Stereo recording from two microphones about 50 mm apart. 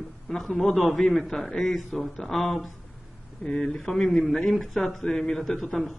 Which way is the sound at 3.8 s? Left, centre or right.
Centre.